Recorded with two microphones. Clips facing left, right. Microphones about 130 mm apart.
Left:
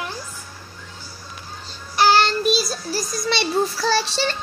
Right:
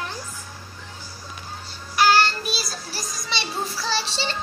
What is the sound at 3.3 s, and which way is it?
A child's voice, 50° left (ahead or behind).